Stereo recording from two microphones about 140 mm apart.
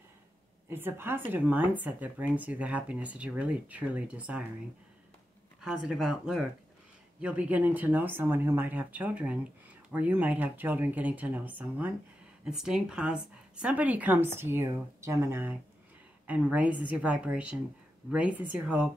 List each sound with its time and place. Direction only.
0.7 s speech: 15° right (ahead or behind)
5.6 s speech: 5° right (ahead or behind)